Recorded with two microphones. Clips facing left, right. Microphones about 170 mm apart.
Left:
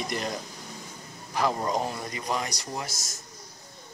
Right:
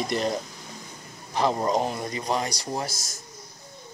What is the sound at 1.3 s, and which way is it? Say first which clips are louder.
Speech: right 3 dB; 25° right (ahead or behind).